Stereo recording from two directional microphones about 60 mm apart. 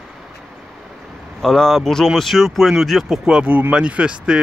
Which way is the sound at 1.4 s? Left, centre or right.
Centre.